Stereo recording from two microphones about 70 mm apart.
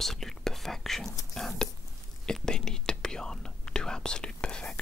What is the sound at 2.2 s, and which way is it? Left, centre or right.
Whispering, centre.